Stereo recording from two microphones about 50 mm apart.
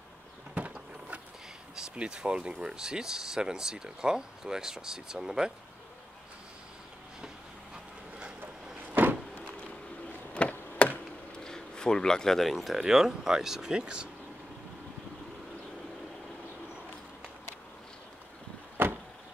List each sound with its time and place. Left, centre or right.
0.6 s a sound: right
2.0 s speech: right
8.9 s vehicle: right
10.4 s chop: left
11.3 s speech: centre
12.7 s speech: centre
18.8 s vehicle: right